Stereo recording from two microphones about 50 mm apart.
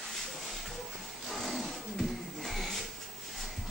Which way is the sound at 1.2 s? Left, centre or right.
Centre.